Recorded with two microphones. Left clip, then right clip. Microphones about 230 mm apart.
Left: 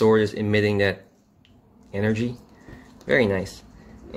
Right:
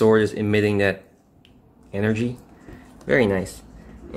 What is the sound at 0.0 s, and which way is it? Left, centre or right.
Speech, centre.